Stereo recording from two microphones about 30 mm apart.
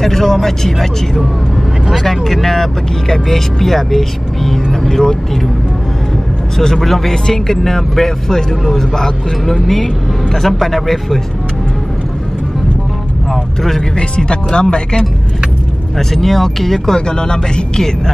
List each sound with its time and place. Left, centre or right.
0.0 s speech: centre
2.0 s speech: centre
6.6 s speech: centre
9.5 s speech: centre
13.3 s speech: centre
13.9 s speech: left
16.0 s speech: centre
16.9 s speech: left